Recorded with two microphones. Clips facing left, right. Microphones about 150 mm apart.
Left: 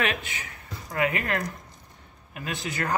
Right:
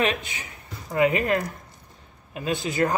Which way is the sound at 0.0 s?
20° right (ahead or behind).